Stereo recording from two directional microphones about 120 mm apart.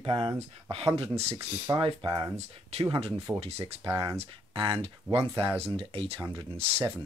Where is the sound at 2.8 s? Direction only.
45° right (ahead or behind).